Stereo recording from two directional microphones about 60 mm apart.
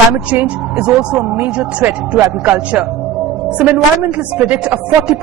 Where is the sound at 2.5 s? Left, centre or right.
Right.